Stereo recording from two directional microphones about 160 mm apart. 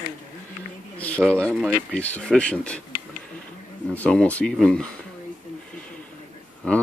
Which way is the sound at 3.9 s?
10° left (ahead or behind).